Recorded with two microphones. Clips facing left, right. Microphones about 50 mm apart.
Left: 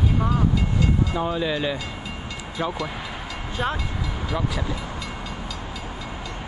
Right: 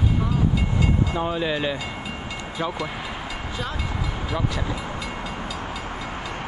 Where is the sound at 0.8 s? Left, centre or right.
Centre.